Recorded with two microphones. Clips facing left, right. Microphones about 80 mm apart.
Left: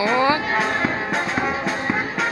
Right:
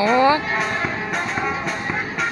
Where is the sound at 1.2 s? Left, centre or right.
Centre.